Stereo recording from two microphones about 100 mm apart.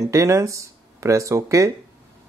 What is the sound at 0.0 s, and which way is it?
Speech, 30° right (ahead or behind).